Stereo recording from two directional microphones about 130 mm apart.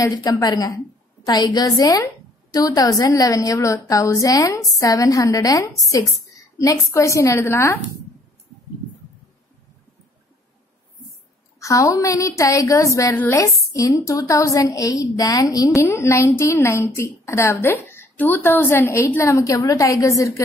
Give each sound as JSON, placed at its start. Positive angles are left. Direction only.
{"t": 0.1, "sound": "a woman's voice", "side_deg": 30}
{"t": 11.6, "sound": "a woman's voice", "side_deg": 25}
{"t": 13.1, "sound": "a woman's voice", "side_deg": 15}
{"t": 13.4, "sound": "a woman's voice", "side_deg": 25}